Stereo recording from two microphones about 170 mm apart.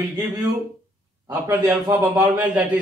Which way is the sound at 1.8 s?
20° right (ahead or behind).